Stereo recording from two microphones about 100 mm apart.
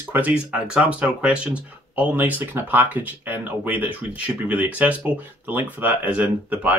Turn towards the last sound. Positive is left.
turn(degrees=-15)  # may be behind; listen again after turning